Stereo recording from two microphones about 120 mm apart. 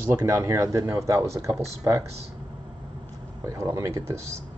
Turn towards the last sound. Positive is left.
turn(degrees=-25)  # may be behind; listen again after turning